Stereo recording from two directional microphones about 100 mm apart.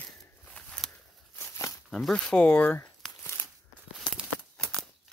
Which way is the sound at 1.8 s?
5° left (ahead or behind).